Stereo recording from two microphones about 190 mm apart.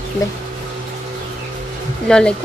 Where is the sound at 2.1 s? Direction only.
5° left (ahead or behind).